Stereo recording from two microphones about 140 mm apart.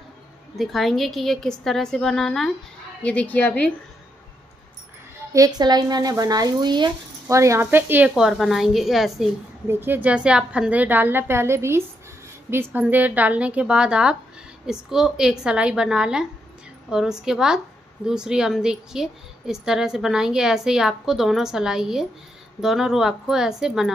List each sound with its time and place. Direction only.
0.6 s a woman's voice: centre (ahead or behind)
5.3 s speech: 25° right (ahead or behind)
8.1 s a woman's voice: centre (ahead or behind)
9.7 s a woman's voice: 15° right (ahead or behind)